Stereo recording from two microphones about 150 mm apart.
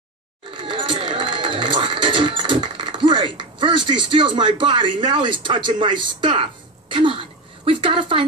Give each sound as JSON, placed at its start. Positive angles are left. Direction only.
{"t": 0.5, "sound": "music", "side_deg": -35}